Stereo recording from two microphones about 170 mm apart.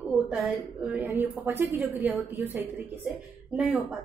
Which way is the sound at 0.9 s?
10° right (ahead or behind).